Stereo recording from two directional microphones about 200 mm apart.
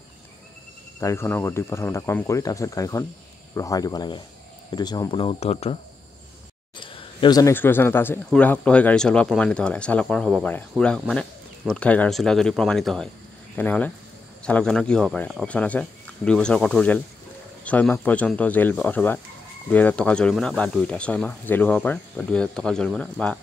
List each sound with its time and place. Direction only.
1.0 s speech: 10° left (ahead or behind); by 5.8 s 30° left (ahead or behind)
6.8 s speech: 25° left (ahead or behind); by 23.3 s 5° left (ahead or behind)